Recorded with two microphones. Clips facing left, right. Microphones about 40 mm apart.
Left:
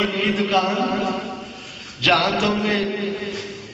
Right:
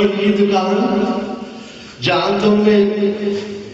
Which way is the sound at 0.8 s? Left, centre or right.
Centre.